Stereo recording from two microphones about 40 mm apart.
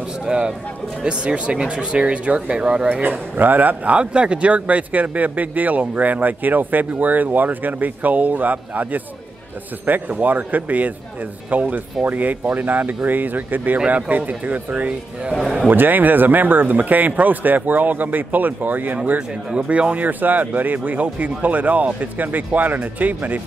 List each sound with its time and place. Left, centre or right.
0.2 s speech: right
2.6 s speech: right
2.9 s a man's voice: right
4.0 s a man's voice: right
13.8 s speech: right
15.3 s a man's voice: centre
15.7 s a man's voice: right
19.1 s speech: right
19.9 s a man's voice: right